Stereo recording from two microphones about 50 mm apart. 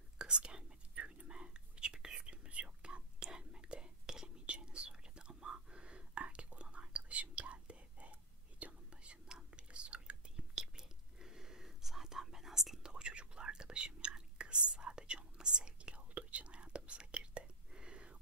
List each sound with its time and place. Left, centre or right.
0.2 s whispering: centre